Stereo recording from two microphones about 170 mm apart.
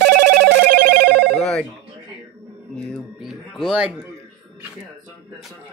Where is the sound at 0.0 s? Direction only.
75° right (ahead or behind).